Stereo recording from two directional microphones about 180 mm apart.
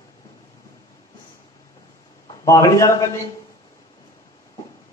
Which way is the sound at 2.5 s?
15° left (ahead or behind).